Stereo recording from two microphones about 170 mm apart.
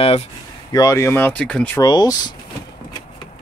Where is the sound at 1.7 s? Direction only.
25° left (ahead or behind).